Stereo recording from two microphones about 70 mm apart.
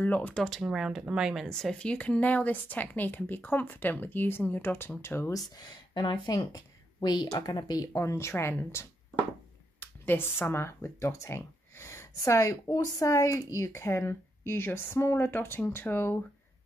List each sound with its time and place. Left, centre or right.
0.0 s speech: left
0.3 s speech: centre
0.7 s speech: centre
1.6 s speech: centre; by 5.3 s left
5.6 s a woman's voice: left
7.9 s speech: left
9.8 s speech: left